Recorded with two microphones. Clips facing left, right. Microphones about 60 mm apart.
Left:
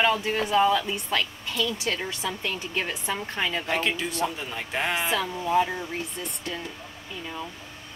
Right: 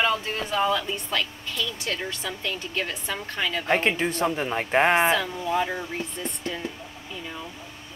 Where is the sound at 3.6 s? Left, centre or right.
Right.